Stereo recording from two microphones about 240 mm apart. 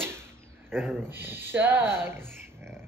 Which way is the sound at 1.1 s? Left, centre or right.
Centre.